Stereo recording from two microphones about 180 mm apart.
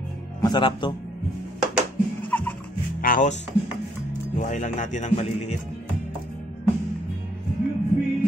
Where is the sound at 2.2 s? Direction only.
10° left (ahead or behind).